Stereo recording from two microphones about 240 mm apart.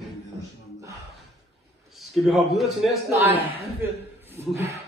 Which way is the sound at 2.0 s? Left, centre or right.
Centre.